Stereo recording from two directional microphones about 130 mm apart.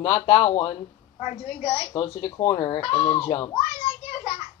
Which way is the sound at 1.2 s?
45° left (ahead or behind).